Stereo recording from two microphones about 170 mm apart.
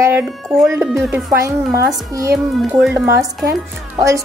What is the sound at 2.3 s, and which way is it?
A woman's voice, 5° right (ahead or behind).